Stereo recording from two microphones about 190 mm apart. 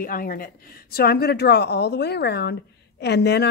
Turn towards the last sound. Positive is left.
turn(degrees=60)  # may be behind; listen again after turning